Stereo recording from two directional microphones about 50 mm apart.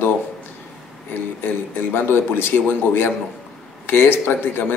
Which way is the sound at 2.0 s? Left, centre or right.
Left.